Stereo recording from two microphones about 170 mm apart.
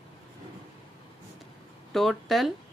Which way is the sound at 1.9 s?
Centre (ahead or behind).